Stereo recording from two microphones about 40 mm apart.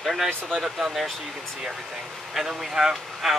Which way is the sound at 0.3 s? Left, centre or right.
Centre.